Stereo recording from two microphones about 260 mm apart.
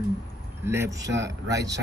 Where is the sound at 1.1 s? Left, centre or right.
Right.